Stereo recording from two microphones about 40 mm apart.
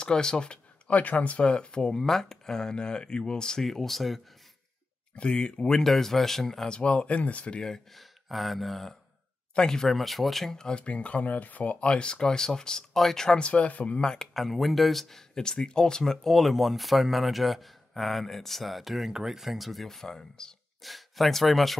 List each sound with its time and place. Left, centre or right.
0.0 s a sound: centre
0.9 s speech: left; by 3.6 s centre
3.6 s speech: centre
5.1 s speech: left
6.7 s speech: left
7.9 s speech: centre
9.6 s speech: centre
9.8 s speech: centre
10.5 s speech: centre
10.8 s speech: left; by 13.4 s centre
13.4 s speech: left
14.0 s speech: centre
14.3 s speech: centre
20.8 s speech: centre